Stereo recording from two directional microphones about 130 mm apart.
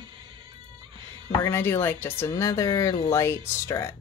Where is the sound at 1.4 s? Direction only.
20° left (ahead or behind).